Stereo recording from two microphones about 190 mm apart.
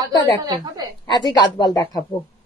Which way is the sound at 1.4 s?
20° left (ahead or behind).